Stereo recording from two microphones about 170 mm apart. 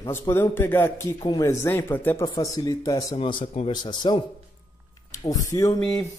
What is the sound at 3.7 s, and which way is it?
Speech, 25° left (ahead or behind).